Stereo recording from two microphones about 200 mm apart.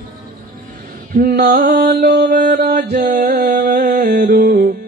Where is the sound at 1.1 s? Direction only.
45° right (ahead or behind).